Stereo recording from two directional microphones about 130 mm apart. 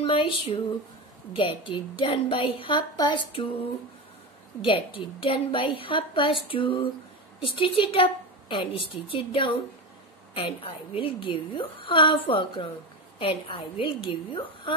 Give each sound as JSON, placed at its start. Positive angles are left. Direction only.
{"t": 0.0, "sound": "a woman's voice", "side_deg": 40}
{"t": 1.6, "sound": "a woman's voice", "side_deg": 40}
{"t": 4.6, "sound": "a woman's voice", "side_deg": 40}